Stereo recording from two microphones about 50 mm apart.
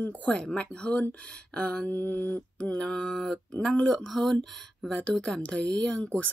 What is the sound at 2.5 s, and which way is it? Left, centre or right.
Mantra, centre.